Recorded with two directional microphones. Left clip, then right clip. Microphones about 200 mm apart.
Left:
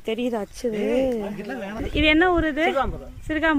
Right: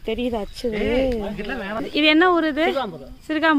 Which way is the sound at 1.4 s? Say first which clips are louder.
Right 4 dB; 15° right (ahead or behind).